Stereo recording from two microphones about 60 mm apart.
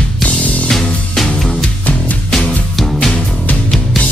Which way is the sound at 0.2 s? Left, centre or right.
Left.